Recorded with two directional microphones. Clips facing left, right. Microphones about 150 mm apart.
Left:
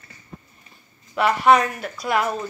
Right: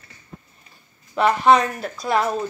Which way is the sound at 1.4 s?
25° right (ahead or behind).